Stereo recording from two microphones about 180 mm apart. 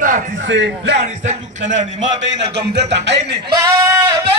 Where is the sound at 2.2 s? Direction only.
75° right (ahead or behind).